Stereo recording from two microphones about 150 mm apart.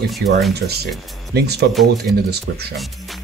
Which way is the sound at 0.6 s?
90° right.